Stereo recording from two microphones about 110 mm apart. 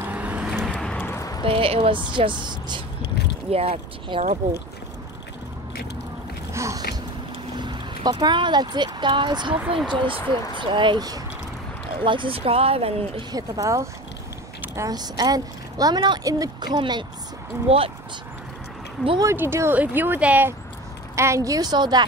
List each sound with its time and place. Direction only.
0.0 s vehicle: 15° right (ahead or behind)
0.7 s a sound: 5° left (ahead or behind)
1.0 s a sound: 30° left (ahead or behind)
1.4 s a woman's voice: 55° right (ahead or behind)
3.5 s speech: 65° right (ahead or behind)
6.5 s a sound: 25° right (ahead or behind)
7.5 s a woman's voice: 40° right (ahead or behind)
12.0 s speech: 50° right (ahead or behind)
13.3 s speech: 35° right (ahead or behind)
17.6 s speech: 60° right (ahead or behind)
19.3 s speech: 25° right (ahead or behind)
21.2 s speech: 30° right (ahead or behind)